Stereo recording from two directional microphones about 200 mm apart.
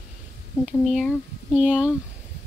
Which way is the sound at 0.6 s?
Centre (ahead or behind).